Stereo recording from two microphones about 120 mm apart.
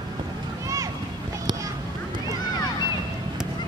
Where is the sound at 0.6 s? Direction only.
30° right (ahead or behind).